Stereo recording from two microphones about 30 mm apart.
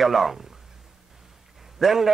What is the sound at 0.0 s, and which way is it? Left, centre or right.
Speech, centre.